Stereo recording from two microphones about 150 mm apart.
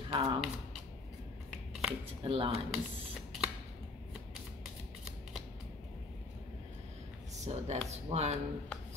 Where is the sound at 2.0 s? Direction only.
40° right (ahead or behind).